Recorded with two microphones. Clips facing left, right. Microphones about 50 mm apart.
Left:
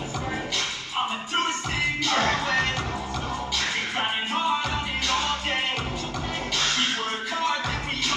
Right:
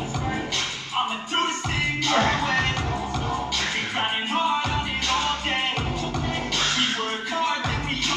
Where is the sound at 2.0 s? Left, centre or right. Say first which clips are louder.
Right 3 dB; centre.